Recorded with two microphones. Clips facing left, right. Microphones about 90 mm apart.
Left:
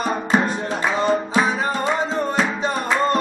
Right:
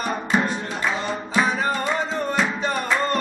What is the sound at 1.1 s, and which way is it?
Music, 30° left (ahead or behind).